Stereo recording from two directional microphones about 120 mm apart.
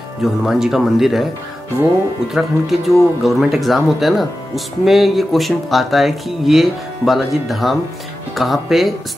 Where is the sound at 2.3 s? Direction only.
Centre (ahead or behind).